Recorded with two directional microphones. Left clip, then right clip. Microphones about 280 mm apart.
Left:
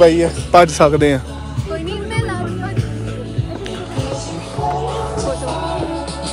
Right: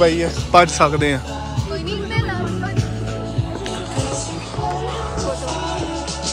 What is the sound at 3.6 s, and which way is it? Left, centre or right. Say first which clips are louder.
Music: even; centre.